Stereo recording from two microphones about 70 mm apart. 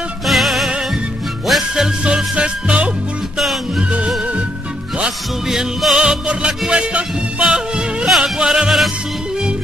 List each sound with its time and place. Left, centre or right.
0.2 s music: centre
3.3 s music: centre
4.9 s music: centre